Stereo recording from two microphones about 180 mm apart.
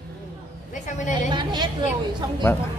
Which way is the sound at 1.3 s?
25° right (ahead or behind).